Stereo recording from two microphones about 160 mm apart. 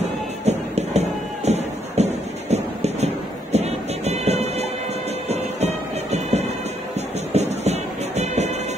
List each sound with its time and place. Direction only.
0.5 s music: 45° right (ahead or behind)
2.5 s a sound: 45° right (ahead or behind)
3.5 s music: 40° right (ahead or behind)